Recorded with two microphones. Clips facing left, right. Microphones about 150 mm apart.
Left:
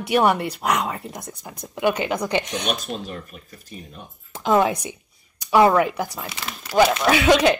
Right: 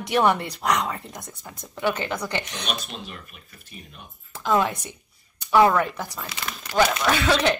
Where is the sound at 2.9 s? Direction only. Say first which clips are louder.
Left 7 dB; 40° left (ahead or behind).